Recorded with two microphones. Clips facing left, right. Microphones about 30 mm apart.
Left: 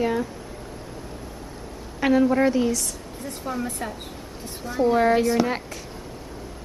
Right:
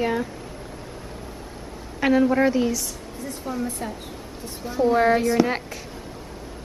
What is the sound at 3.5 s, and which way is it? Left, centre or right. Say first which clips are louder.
Speech: even; centre.